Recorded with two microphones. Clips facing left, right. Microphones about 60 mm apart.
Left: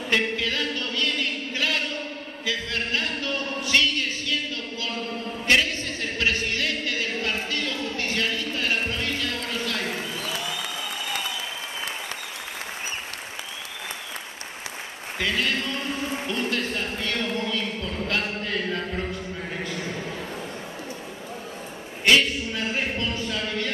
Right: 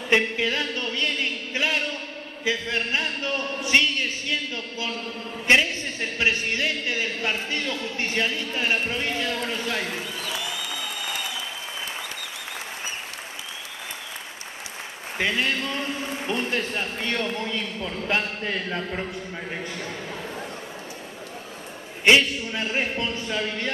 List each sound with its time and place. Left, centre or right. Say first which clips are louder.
0.1 s a sound: right 3 dB; right
2.4 s a woman's voice: right 3 dB; right
5.5 s a woman's voice: right 2 dB; right
15.1 s a sound: right 1 dB; centre
16.3 s a woman's voice: right 3 dB; right
22.0 s a woman's voice: right 2 dB; right